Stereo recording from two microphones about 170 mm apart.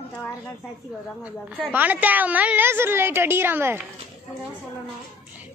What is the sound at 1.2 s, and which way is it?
A woman's voice, 5° right (ahead or behind).